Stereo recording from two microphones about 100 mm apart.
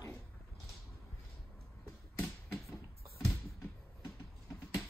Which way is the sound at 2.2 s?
Centre (ahead or behind).